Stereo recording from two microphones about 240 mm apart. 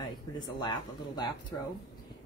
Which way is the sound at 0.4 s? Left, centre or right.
Centre.